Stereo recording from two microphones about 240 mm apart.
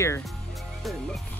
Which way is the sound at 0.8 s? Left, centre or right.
Centre.